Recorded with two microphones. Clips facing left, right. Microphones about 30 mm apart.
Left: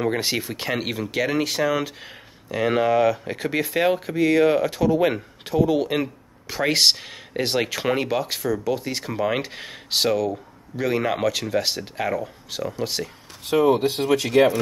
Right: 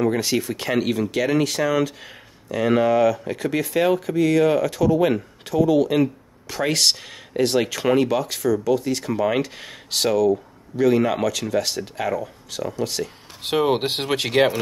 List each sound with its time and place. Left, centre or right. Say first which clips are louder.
0.0 s speech: right 3 dB; left
2.8 s speech: right 1 dB; centre
3.1 s speech: right 1 dB; centre
13.4 s speech: left 2 dB; right